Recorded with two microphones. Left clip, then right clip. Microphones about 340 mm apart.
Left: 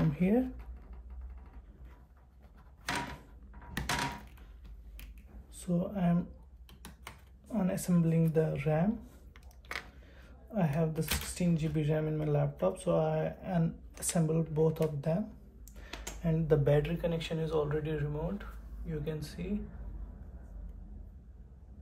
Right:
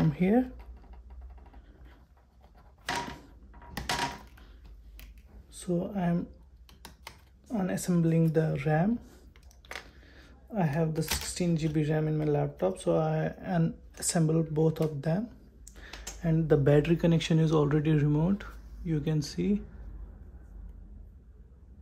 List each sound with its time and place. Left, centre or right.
0.1 s speech: right
5.5 s speech: right
7.5 s speech: right